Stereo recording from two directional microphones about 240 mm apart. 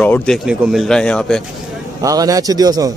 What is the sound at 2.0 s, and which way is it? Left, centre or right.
Speech, centre.